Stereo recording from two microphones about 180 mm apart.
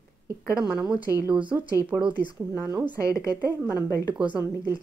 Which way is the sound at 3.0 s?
20° left (ahead or behind).